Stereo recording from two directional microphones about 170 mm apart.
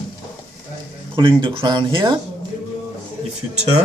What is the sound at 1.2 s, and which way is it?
Speech, 30° right (ahead or behind).